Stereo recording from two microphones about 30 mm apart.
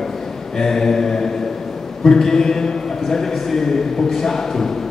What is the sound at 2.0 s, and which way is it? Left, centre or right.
A man's voice, centre.